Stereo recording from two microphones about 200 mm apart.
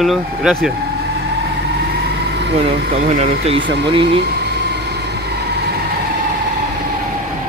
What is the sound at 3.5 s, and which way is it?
Speech, 65° right (ahead or behind).